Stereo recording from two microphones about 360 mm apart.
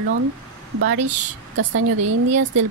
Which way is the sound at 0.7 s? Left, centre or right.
Right.